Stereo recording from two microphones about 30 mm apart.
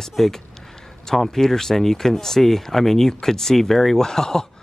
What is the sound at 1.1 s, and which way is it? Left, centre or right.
Speech, centre.